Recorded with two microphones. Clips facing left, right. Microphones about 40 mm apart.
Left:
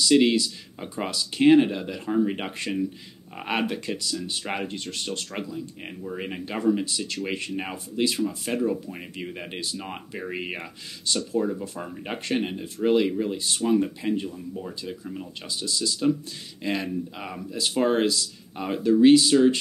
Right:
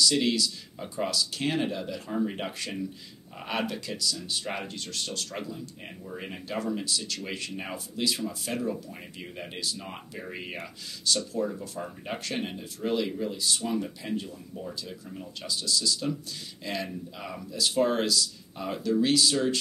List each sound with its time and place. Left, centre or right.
0.1 s speech: left
8.5 s speech: centre
11.4 s speech: centre
12.2 s speech: left